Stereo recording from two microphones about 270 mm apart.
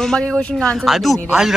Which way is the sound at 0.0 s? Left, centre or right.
Centre.